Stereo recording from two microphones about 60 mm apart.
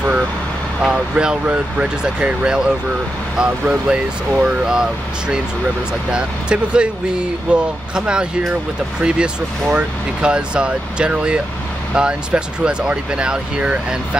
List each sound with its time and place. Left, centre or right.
0.8 s speech: centre
6.1 s speech: centre